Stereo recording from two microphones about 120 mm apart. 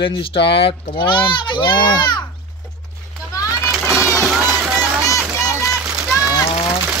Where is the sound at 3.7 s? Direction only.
10° right (ahead or behind).